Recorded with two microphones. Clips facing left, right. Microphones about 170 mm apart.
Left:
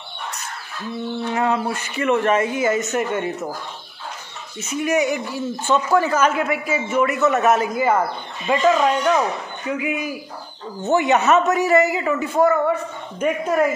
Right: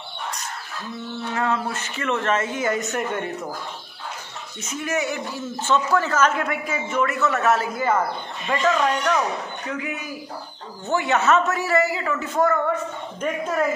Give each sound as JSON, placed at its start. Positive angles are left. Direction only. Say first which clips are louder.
{"t": 1.3, "sound": "speech", "louder": "left 3 dB", "side_deg": 15}
{"t": 4.6, "sound": "speech", "louder": "left 6 dB", "side_deg": 10}